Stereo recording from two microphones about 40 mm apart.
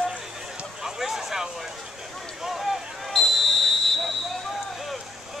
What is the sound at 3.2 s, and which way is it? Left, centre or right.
Basketball bounce, centre.